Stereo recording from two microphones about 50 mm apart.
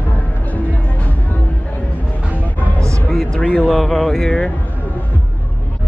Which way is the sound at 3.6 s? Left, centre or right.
Centre.